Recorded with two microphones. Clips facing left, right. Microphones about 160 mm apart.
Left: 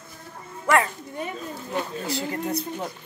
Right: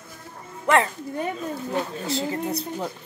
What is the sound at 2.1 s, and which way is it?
Speech, 25° right (ahead or behind).